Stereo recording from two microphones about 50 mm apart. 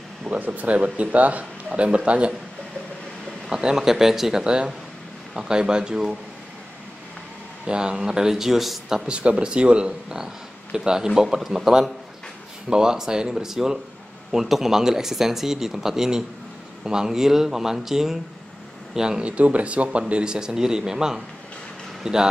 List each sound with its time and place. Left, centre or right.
0.2 s speech: right
3.4 s speech: centre
7.6 s speech: centre
9.1 s speech: right